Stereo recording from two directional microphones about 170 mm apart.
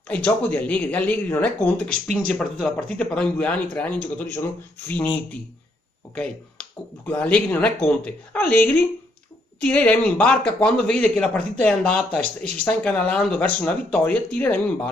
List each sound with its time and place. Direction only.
0.1 s speech: 10° left (ahead or behind)
6.1 s speech: 5° left (ahead or behind)
9.6 s speech: 10° left (ahead or behind)